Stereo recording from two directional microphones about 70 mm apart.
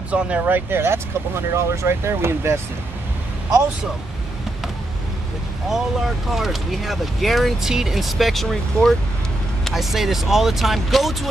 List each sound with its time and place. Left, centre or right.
0.1 s speech: centre; by 2.6 s right
5.7 s speech: centre